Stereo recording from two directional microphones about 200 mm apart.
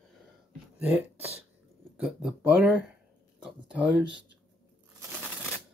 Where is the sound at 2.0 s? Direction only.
5° right (ahead or behind).